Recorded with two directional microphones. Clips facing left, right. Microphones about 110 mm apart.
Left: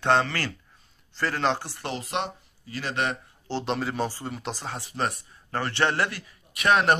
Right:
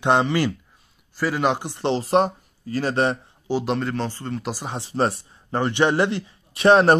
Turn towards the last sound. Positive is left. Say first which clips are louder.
# right 7 dB
turn(degrees=-30)  # may be behind; listen again after turning